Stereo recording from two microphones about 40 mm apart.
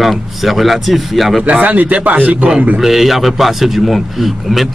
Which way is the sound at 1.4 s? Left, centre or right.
Right.